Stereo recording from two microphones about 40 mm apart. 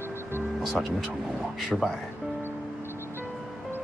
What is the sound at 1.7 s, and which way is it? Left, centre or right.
Speech, centre.